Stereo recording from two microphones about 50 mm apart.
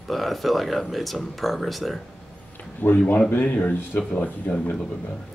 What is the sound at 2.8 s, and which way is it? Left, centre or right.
Speech, left.